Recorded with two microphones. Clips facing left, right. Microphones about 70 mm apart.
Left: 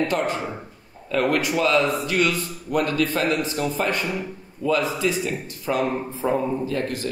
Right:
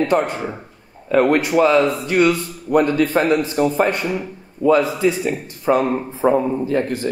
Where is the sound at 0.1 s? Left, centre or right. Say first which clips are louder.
Right 5 dB; right.